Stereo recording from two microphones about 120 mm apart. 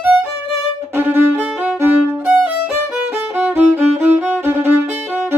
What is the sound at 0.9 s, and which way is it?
Violin, 15° right (ahead or behind).